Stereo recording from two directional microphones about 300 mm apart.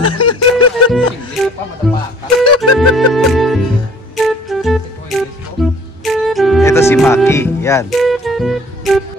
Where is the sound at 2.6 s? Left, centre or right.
Centre.